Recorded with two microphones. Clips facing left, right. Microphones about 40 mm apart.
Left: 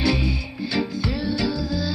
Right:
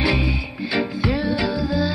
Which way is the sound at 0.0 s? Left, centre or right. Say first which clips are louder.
Right 2 dB; centre.